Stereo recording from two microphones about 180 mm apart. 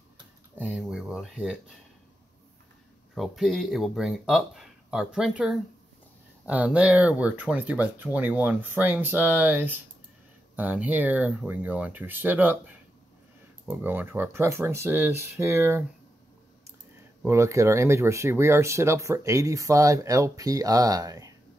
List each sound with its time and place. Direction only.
0.6 s speech: 5° right (ahead or behind)
3.2 s speech: centre (ahead or behind)
17.2 s speech: 15° right (ahead or behind)